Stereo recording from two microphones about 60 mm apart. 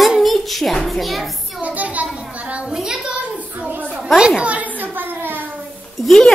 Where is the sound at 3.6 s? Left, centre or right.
Right.